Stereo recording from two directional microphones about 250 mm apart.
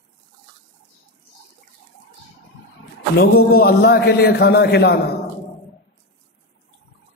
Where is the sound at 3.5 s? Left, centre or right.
Left.